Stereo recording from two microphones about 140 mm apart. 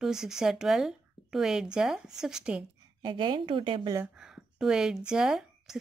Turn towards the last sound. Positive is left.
turn(degrees=-5)  # may be behind; listen again after turning